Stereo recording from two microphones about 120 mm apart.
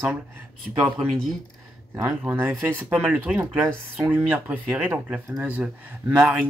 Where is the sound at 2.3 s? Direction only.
20° right (ahead or behind).